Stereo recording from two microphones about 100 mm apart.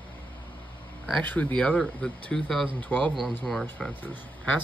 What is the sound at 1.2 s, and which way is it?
Speech, 15° left (ahead or behind).